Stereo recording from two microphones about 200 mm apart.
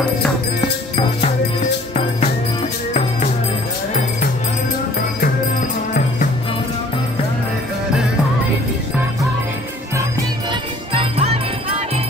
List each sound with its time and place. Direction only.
2.0 s music: 30° left (ahead or behind)
10.5 s music: 25° right (ahead or behind)